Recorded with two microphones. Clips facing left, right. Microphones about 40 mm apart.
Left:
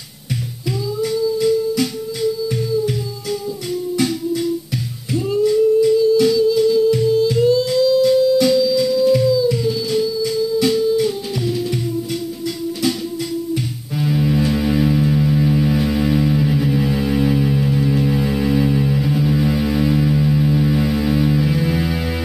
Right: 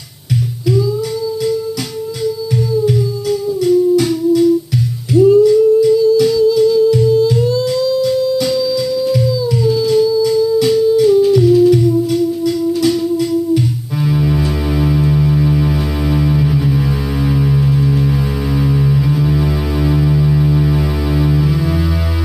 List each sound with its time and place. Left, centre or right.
5.1 s humming: left
6.3 s music: left
9.8 s music: left
14.0 s music: centre
14.9 s a sound: centre
21.5 s music: left